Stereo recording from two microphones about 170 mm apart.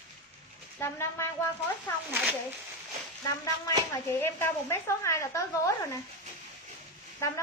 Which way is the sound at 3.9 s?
15° left (ahead or behind).